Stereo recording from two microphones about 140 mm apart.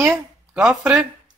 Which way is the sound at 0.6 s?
5° right (ahead or behind).